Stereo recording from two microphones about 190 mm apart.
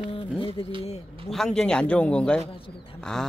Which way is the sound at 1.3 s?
Centre (ahead or behind).